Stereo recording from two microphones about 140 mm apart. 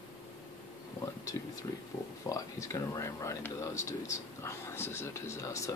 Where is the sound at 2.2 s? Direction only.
25° left (ahead or behind).